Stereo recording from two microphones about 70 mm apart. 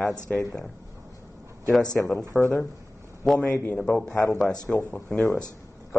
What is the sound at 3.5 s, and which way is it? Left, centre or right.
Speech, left.